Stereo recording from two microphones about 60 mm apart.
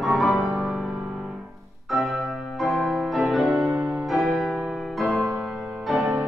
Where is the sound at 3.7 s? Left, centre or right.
Right.